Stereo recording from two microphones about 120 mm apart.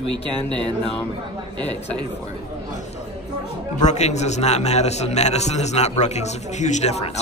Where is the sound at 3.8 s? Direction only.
75° left (ahead or behind).